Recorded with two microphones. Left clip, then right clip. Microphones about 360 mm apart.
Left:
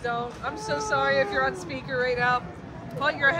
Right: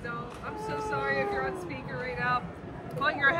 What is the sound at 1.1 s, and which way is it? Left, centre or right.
Speech, left.